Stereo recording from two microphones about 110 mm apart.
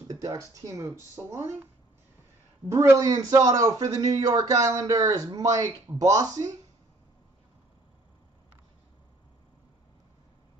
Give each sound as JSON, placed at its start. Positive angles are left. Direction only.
{"t": 0.1, "sound": "speech", "side_deg": -30}
{"t": 2.7, "sound": "a man's voice", "side_deg": -30}